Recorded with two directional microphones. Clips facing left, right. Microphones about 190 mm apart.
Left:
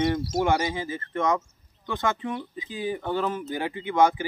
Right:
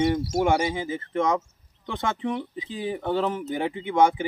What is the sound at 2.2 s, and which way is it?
Speech, 25° right (ahead or behind).